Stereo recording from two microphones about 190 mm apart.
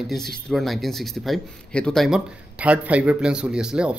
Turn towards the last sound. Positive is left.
turn(degrees=-5)  # may be behind; listen again after turning